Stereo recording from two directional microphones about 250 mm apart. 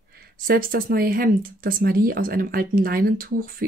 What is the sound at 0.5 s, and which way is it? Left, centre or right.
Speech, right.